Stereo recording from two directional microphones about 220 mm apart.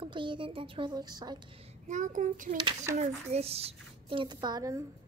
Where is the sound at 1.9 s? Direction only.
35° right (ahead or behind); by 4.8 s 15° right (ahead or behind).